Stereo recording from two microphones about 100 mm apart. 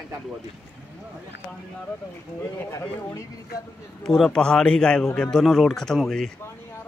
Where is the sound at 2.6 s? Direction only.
30° left (ahead or behind).